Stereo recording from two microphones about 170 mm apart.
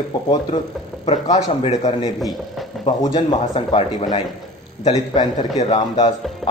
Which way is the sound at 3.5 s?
35° left (ahead or behind).